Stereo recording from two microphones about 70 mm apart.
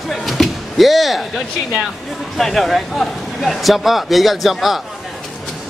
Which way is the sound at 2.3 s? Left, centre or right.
Centre.